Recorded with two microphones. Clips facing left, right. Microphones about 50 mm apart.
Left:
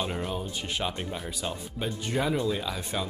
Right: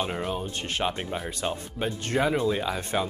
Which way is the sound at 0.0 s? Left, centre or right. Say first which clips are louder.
Right 2 dB; centre.